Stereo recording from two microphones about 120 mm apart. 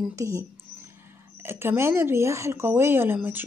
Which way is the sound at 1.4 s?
20° right (ahead or behind).